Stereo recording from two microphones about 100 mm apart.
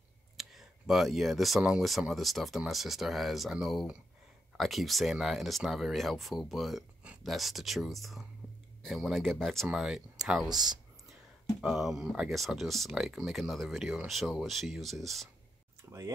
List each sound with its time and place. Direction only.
0.4 s speech: 5° right (ahead or behind)
15.8 s tick-tock: 30° right (ahead or behind)